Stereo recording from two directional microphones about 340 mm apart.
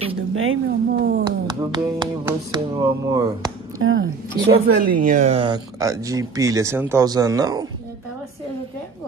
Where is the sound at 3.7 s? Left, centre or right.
Right.